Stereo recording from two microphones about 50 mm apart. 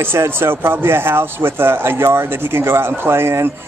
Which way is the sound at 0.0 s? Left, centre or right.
Right.